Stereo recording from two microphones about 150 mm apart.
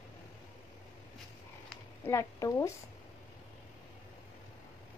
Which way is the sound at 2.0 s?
20° left (ahead or behind).